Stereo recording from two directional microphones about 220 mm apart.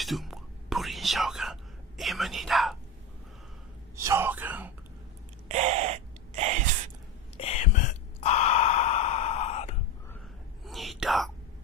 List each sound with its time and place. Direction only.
0.0 s whispering: centre (ahead or behind)
3.9 s whispering: 15° right (ahead or behind)
5.5 s gasp: 30° right (ahead or behind)
7.3 s sigh: 30° left (ahead or behind)
10.6 s whispering: centre (ahead or behind)